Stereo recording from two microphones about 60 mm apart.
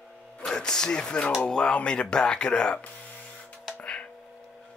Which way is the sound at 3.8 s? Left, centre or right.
Centre.